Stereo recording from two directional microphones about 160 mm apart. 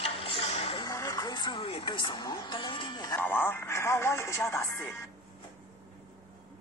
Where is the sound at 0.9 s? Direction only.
20° left (ahead or behind).